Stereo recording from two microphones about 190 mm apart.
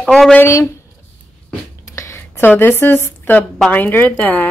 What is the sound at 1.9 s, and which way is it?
A woman's voice, 15° left (ahead or behind).